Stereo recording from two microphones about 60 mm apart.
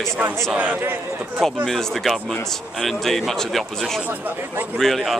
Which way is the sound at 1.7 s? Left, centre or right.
Centre.